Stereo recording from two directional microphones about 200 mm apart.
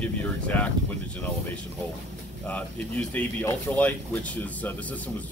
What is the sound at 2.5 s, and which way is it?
Speech, 10° left (ahead or behind).